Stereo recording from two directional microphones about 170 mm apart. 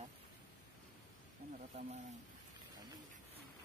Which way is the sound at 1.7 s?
35° right (ahead or behind).